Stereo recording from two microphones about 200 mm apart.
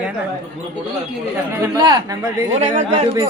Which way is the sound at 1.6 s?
20° right (ahead or behind).